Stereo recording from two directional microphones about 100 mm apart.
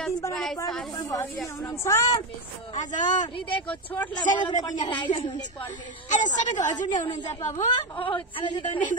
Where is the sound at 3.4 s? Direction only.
60° left (ahead or behind).